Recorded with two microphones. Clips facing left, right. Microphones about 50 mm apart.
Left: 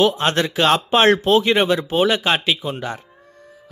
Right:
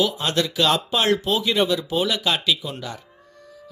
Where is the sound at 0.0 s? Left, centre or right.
Left.